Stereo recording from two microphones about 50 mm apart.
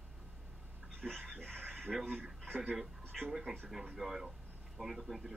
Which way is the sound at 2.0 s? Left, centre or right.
Centre.